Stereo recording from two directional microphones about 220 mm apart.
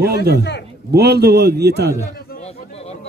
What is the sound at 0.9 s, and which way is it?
A man's voice, 45° right (ahead or behind).